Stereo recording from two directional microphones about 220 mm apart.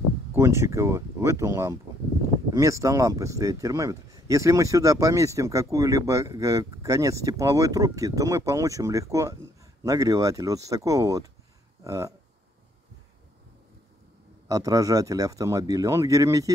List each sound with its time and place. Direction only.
0.3 s speech: 10° right (ahead or behind)
14.5 s speech: 15° right (ahead or behind)